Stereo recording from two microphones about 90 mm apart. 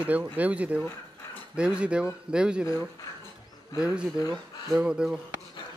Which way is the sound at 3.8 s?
10° right (ahead or behind).